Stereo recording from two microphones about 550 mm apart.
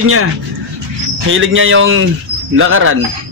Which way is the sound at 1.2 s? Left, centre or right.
Right.